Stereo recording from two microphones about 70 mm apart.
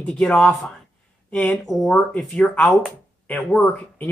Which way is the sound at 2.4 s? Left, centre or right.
Centre.